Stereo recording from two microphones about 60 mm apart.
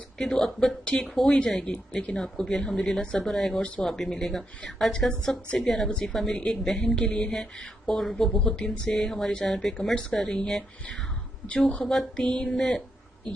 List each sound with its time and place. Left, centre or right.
0.2 s speech: centre
0.8 s a woman's voice: centre
11.8 s speech: centre
12.3 s speech: centre